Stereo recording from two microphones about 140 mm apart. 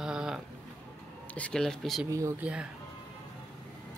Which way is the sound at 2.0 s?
20° right (ahead or behind).